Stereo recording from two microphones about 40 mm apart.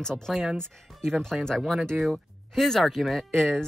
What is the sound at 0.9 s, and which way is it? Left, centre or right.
Music, centre.